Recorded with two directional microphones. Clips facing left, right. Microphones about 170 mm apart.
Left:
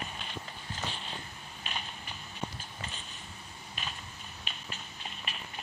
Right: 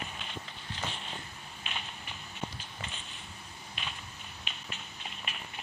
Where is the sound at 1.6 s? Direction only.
40° left (ahead or behind).